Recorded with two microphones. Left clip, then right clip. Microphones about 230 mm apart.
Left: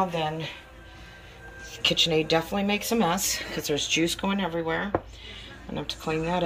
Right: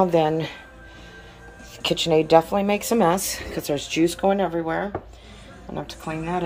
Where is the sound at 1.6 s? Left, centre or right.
Centre.